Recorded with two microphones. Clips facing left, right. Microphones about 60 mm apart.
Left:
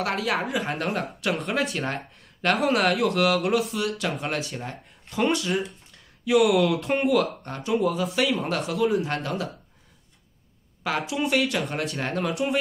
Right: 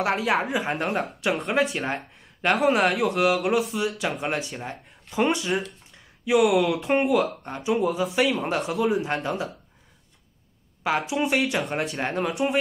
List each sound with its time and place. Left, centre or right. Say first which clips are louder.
0.0 s speech: right 3 dB; centre
4.5 s speech: even; centre
10.8 s speech: right 2 dB; centre
12.3 s speech: even; centre